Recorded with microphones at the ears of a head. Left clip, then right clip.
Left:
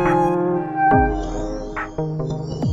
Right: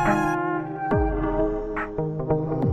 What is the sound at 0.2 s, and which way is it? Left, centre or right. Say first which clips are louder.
Music: left 5 dB; left.